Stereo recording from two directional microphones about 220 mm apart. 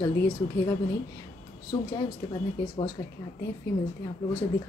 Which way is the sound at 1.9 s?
20° left (ahead or behind).